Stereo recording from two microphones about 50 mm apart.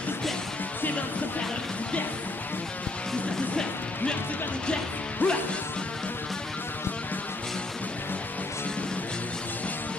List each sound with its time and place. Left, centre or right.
3.5 s music: left
5.2 s music: left